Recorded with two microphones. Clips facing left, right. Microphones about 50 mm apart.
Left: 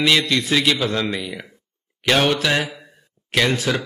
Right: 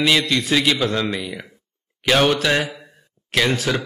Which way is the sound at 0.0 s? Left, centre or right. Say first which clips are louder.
Even; centre.